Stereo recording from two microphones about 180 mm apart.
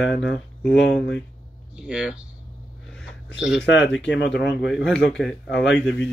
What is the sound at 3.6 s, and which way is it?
Speech, 85° left.